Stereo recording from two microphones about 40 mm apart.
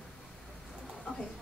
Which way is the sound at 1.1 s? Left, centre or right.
Left.